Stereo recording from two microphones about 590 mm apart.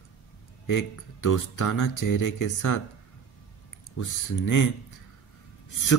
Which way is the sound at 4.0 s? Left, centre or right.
Left.